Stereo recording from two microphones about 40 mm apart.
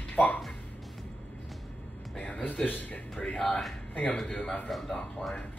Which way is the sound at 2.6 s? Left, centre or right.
Left.